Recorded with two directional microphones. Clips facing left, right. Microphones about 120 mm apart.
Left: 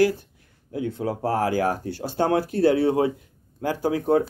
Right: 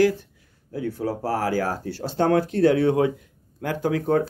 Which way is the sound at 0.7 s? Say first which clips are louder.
Even; 25° left (ahead or behind).